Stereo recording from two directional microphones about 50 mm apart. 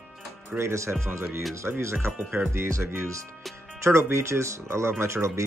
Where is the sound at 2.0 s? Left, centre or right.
Right.